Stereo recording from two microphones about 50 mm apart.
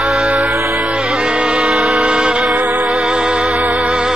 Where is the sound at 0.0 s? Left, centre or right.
Centre.